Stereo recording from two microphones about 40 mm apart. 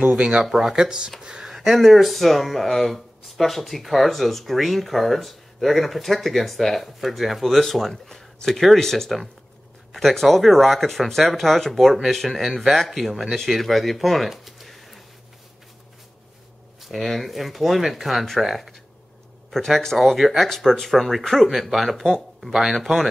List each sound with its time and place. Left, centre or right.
0.4 s speech: centre
1.5 s speech: centre
16.8 s speech: centre
21.5 s speech: centre
22.5 s speech: centre